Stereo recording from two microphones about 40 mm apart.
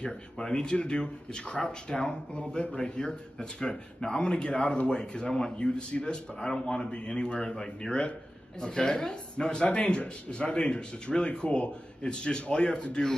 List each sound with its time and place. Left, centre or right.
0.0 s a man's voice: left